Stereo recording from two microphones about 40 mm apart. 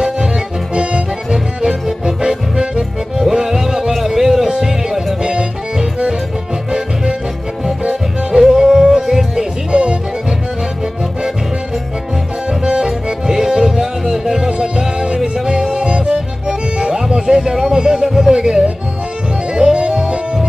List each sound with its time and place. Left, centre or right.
1.3 s music: centre
3.3 s music: centre
7.6 s music: centre
12.4 s music: centre
16.9 s music: centre